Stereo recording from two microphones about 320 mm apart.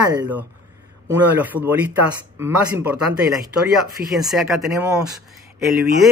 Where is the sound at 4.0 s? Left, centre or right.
Right.